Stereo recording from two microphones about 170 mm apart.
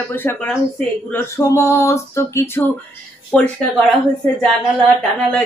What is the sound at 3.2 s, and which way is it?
Speech, 5° left (ahead or behind).